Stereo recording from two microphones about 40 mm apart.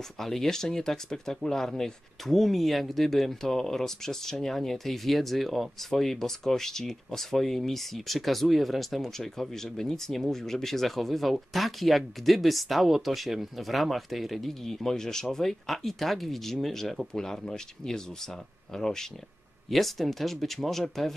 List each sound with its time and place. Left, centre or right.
0.2 s speech: centre
19.7 s speech: centre